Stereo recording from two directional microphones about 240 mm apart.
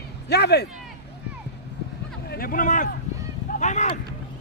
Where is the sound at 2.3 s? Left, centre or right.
Left.